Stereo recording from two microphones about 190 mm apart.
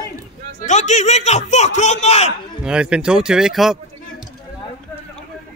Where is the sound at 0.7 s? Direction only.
40° left (ahead or behind).